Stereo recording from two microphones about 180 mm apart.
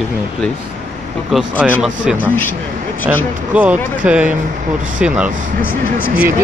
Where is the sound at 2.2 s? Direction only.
10° left (ahead or behind).